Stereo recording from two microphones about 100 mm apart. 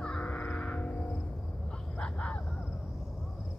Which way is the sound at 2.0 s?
10° left (ahead or behind).